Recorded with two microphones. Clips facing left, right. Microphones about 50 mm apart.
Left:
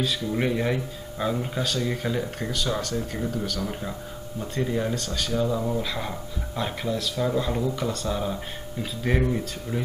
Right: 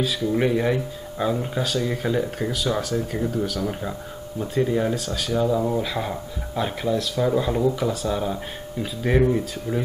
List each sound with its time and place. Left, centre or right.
0.0 s speech: centre
5.6 s speech: centre